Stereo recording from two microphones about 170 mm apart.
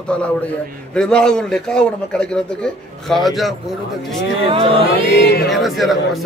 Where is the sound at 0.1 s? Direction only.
5° left (ahead or behind).